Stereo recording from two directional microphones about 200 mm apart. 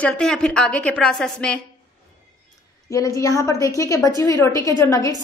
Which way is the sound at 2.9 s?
15° left (ahead or behind).